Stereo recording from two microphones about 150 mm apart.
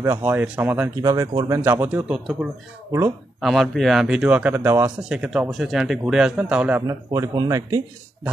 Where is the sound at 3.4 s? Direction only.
Centre (ahead or behind); by 7.8 s 25° right (ahead or behind).